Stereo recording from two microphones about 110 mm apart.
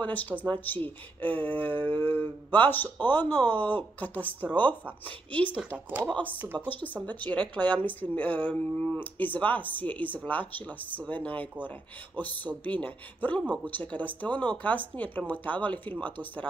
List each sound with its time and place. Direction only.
0.0 s a woman's voice: 15° left (ahead or behind)
6.3 s speech: 15° right (ahead or behind)
6.6 s a woman's voice: 15° left (ahead or behind)